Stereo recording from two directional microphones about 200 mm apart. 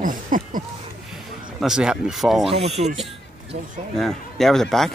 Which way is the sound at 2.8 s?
30° right (ahead or behind).